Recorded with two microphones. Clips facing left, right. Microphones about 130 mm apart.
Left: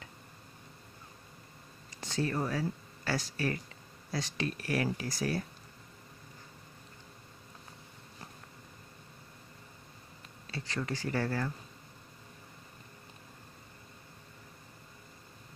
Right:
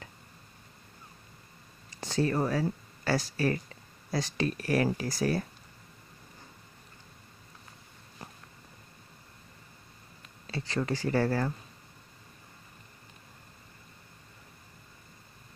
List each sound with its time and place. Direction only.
2.0 s speech: 35° right (ahead or behind)
10.8 s speech: 35° right (ahead or behind)